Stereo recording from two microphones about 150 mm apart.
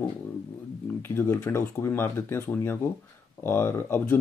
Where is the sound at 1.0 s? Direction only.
15° left (ahead or behind).